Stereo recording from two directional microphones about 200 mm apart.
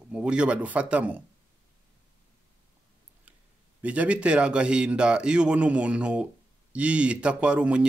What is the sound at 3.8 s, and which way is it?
Speech, 5° right (ahead or behind).